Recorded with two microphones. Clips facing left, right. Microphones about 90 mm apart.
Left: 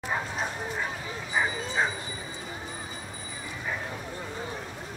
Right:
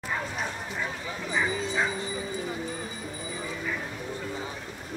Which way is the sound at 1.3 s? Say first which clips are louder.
Even; 20° left (ahead or behind).